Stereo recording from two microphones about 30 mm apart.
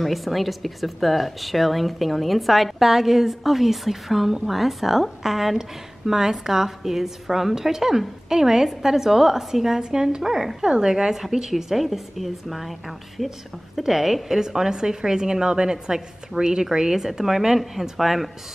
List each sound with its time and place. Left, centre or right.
0.0 s speech: centre
2.8 s a woman's voice: centre
5.6 s a woman's voice: centre
9.8 s a woman's voice: right; by 14.4 s centre
14.4 s a woman's voice: right; by 18.3 s centre